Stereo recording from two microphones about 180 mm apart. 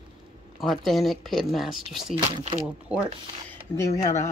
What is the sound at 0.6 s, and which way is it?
Speech, centre (ahead or behind).